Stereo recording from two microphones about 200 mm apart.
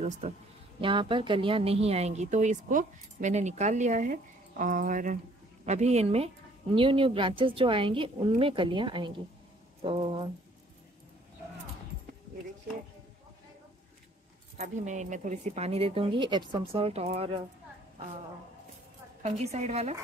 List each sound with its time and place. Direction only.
0.7 s a woman's voice: 25° right (ahead or behind)
14.6 s a woman's voice: 35° right (ahead or behind)
19.2 s a woman's voice: 35° right (ahead or behind)